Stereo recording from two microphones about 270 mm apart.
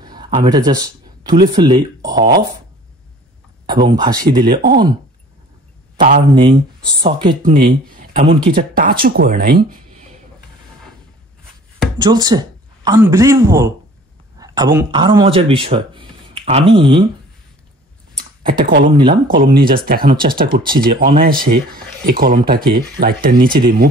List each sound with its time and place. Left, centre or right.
0.0 s a sound: centre
1.6 s speech: centre
3.6 s speech: centre
5.9 s speech: right
6.3 s speech: centre
7.4 s speech: right
12.0 s speech: centre
18.4 s speech: right
18.9 s speech: centre
19.2 s speech: right